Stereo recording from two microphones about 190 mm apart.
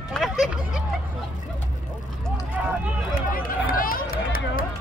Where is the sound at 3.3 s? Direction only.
50° left (ahead or behind).